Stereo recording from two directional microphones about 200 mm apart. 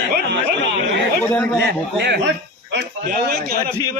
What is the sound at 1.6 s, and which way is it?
A man's voice, 55° right (ahead or behind).